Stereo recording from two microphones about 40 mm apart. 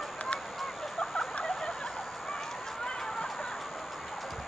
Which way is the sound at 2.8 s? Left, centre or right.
Centre.